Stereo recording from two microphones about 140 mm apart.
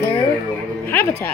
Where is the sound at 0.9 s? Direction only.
15° left (ahead or behind).